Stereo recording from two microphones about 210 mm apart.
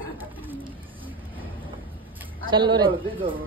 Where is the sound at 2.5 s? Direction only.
20° right (ahead or behind).